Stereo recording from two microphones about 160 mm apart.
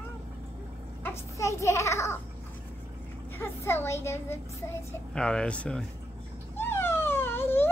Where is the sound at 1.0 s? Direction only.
15° left (ahead or behind).